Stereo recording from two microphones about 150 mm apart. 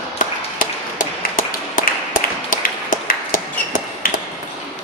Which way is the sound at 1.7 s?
65° left (ahead or behind).